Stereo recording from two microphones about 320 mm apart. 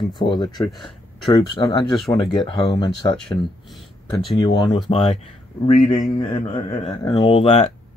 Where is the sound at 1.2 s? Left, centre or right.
Centre.